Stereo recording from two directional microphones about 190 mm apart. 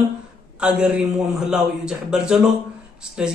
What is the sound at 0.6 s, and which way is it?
Speech, 5° right (ahead or behind).